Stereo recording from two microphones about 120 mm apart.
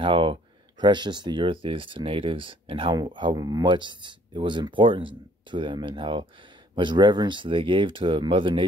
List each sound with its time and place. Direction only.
0.0 s speech: 45° right (ahead or behind)